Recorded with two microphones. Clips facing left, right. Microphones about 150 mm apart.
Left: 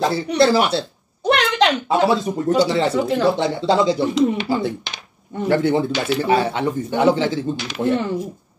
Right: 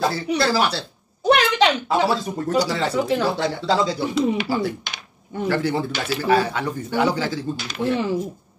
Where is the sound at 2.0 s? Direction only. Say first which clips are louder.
Left 4 dB; 20° left (ahead or behind).